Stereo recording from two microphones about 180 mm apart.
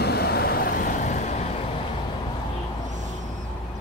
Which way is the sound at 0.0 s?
65° left (ahead or behind).